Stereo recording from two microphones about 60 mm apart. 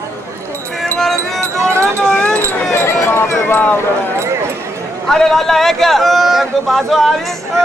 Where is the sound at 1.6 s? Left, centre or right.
Right.